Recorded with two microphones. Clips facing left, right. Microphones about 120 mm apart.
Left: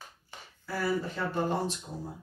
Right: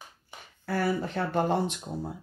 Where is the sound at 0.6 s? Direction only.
65° right (ahead or behind).